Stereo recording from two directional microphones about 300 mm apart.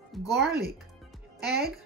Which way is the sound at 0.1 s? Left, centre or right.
Centre.